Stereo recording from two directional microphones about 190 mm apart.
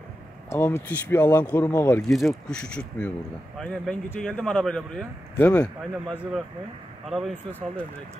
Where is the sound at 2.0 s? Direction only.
Centre (ahead or behind).